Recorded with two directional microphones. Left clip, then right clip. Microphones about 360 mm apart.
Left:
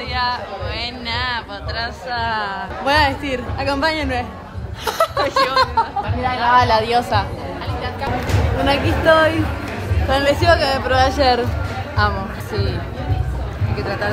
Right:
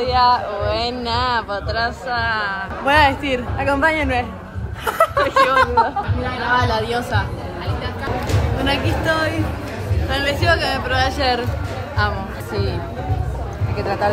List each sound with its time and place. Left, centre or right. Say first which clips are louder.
0.0 s speech: right 6 dB; centre
2.9 s speech: right 2 dB; centre
8.6 s speech: left 5 dB; centre
13.7 s speech: right 3 dB; centre